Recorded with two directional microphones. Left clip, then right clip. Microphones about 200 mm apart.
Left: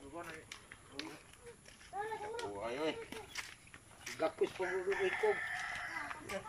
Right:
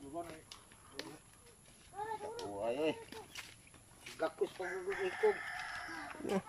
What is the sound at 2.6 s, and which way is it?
Speech, 30° right (ahead or behind).